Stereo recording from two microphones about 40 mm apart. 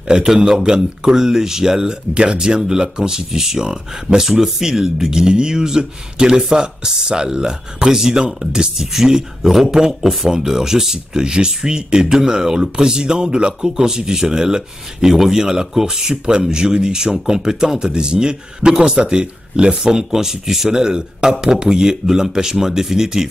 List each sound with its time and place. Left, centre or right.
0.1 s speech: centre